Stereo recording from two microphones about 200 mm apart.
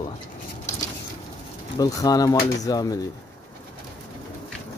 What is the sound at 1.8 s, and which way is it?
Speech, 15° left (ahead or behind).